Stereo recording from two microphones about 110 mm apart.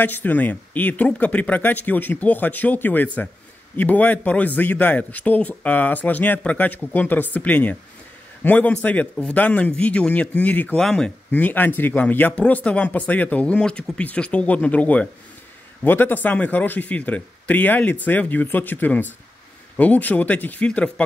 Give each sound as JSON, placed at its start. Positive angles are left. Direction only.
{"t": 0.0, "sound": "speech", "side_deg": 15}